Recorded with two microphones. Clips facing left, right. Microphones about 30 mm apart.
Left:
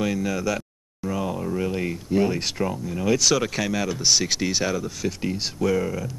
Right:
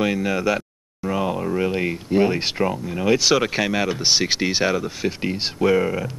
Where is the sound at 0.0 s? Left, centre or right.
Right.